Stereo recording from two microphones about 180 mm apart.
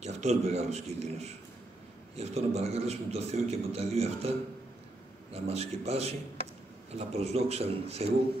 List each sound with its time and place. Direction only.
0.0 s a man's voice: 40° right (ahead or behind)